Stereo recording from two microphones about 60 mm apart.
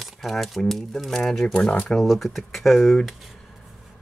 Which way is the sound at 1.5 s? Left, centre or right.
Left.